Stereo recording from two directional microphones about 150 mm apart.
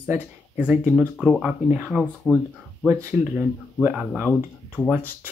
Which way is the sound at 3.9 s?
Centre (ahead or behind).